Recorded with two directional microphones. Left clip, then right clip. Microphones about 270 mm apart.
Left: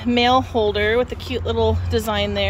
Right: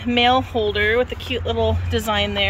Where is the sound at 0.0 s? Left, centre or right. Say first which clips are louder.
Even; centre.